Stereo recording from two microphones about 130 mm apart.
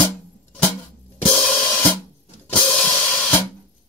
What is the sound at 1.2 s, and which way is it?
Cymbal, 10° left (ahead or behind).